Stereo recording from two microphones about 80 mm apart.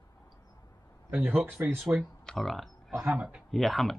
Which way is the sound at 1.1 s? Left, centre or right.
Centre.